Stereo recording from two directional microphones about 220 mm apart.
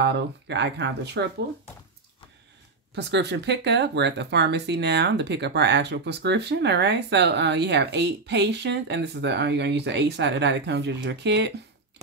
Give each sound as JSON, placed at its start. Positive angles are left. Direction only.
{"t": 0.0, "sound": "speech", "side_deg": -50}
{"t": 2.9, "sound": "speech", "side_deg": -50}